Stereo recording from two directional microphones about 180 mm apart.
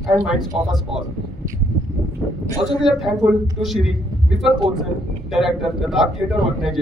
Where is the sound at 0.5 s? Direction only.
30° right (ahead or behind).